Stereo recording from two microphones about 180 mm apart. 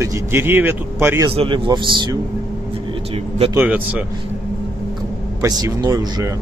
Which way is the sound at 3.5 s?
10° right (ahead or behind).